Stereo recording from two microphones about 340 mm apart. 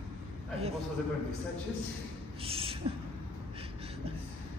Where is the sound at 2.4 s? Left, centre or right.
Centre.